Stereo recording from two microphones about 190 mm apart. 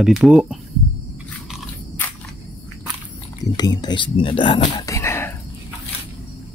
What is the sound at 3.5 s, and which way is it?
Speech, 20° left (ahead or behind).